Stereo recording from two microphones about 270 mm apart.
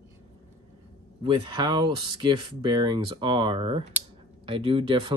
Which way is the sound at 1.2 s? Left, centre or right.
Centre.